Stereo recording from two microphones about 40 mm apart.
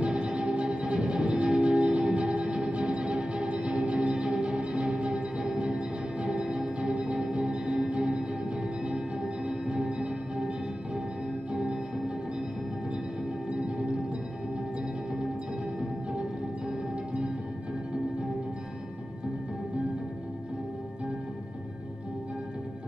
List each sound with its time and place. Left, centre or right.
0.0 s music: right
11.5 s music: centre